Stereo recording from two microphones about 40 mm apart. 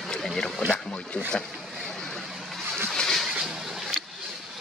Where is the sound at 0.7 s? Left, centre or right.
Left.